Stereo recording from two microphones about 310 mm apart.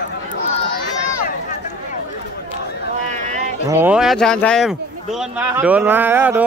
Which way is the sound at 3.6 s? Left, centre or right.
Centre.